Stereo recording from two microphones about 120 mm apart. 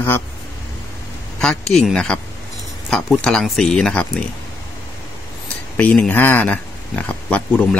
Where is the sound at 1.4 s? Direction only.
5° left (ahead or behind).